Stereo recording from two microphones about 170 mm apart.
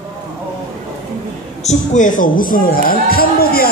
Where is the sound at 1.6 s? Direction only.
45° left (ahead or behind).